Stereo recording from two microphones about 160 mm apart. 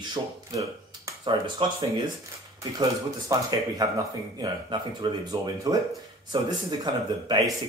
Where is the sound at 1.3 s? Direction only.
35° right (ahead or behind).